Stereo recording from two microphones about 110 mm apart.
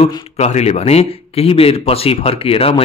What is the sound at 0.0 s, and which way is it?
Speech, 85° left.